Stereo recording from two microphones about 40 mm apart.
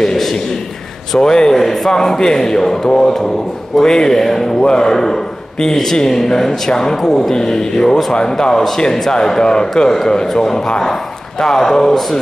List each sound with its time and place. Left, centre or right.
0.0 s a man's voice: centre